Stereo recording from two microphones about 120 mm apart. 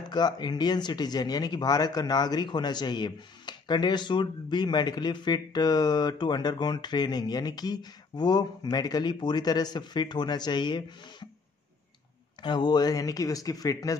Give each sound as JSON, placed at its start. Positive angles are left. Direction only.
{"t": 0.1, "sound": "speech", "side_deg": 35}
{"t": 12.4, "sound": "speech", "side_deg": 40}